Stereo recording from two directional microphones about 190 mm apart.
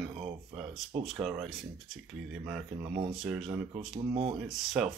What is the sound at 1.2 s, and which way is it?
Speech, centre (ahead or behind).